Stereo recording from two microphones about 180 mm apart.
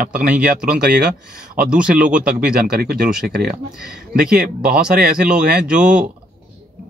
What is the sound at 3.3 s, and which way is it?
Speech, 60° right (ahead or behind).